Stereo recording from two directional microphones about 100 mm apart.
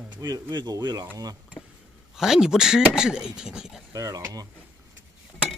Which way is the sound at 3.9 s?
35° right (ahead or behind).